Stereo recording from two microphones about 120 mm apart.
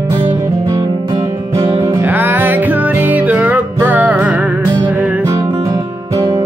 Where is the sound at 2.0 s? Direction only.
15° right (ahead or behind).